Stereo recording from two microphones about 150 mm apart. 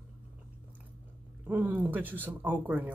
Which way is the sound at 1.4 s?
10° right (ahead or behind).